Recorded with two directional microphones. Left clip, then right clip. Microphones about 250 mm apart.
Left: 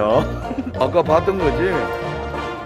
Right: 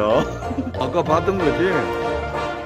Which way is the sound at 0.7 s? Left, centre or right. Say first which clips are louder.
Left 4 dB; centre.